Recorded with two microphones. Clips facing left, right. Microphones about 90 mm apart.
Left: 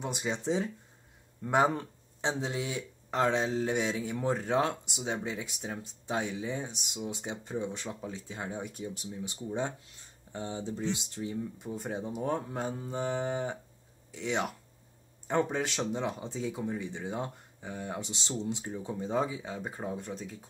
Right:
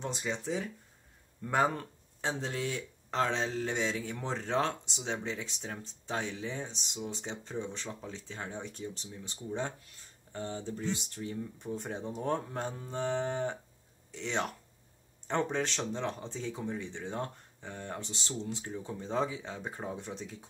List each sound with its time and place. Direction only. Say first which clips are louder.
0.0 s speech: left 2 dB; 15° left (ahead or behind); by 20.4 s centre (ahead or behind)